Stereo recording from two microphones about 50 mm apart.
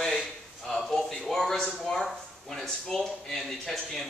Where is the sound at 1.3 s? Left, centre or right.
Centre.